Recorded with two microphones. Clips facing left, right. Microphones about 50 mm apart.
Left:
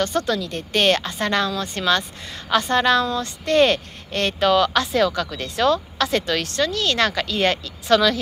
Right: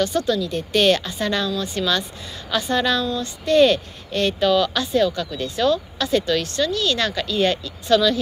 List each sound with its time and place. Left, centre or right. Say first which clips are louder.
0.0 s a woman's voice: right 1 dB; left
4.9 s speech: even; left
5.3 s speech: even; left